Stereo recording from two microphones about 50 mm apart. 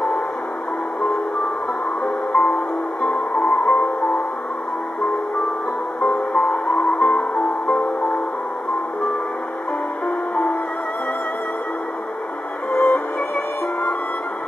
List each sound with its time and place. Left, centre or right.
2.3 s music: centre
3.1 s music: centre
5.9 s music: centre
7.0 s music: centre
7.3 s music: centre
12.7 s music: left